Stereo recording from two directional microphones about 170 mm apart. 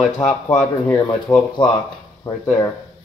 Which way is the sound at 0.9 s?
20° left (ahead or behind).